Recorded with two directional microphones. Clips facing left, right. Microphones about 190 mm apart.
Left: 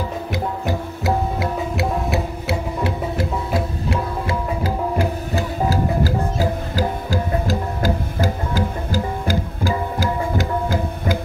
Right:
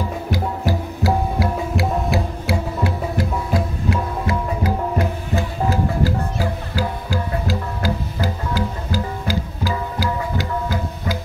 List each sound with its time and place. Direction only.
1.0 s music: 25° left (ahead or behind); by 11.1 s 50° left (ahead or behind)